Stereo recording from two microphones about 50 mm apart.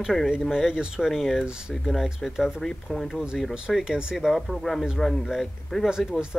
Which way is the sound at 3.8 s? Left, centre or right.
Centre.